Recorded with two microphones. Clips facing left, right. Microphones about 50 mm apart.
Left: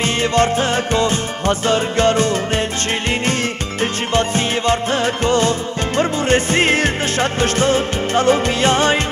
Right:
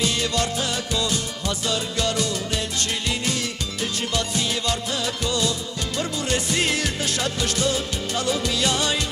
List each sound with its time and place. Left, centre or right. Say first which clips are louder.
0.0 s music: left 8 dB; left
3.8 s music: left 9 dB; left